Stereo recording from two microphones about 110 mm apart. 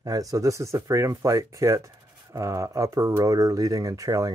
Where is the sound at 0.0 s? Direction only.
30° right (ahead or behind).